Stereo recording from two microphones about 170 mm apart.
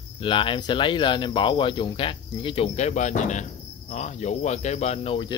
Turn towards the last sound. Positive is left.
turn(degrees=30)  # may be behind; listen again after turning